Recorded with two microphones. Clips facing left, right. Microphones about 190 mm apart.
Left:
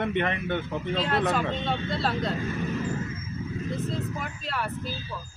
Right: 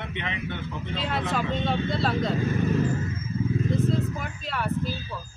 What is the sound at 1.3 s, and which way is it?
Speech, centre (ahead or behind).